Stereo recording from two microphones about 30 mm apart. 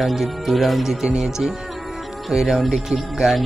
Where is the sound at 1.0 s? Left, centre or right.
Right.